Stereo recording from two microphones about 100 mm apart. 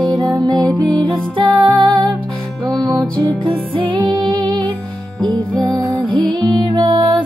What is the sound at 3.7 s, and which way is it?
Music, 55° right (ahead or behind).